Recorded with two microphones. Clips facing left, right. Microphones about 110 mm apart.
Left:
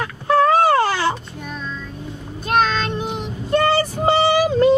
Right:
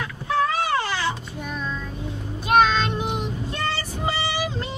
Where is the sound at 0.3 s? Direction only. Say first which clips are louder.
Left 8 dB; 45° left (ahead or behind).